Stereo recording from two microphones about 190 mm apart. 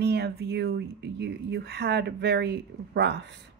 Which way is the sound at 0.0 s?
60° right (ahead or behind).